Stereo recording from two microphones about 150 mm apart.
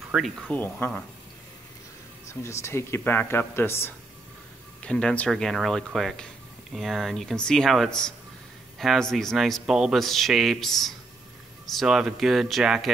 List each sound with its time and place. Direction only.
0.1 s speech: 5° right (ahead or behind)
0.5 s a man's voice: 10° left (ahead or behind)
2.2 s a man's voice: 20° left (ahead or behind); by 12.9 s 5° right (ahead or behind)